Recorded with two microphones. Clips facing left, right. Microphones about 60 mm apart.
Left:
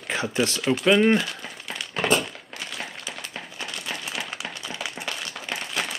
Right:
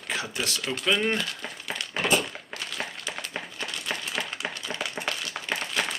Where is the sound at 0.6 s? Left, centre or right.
Centre.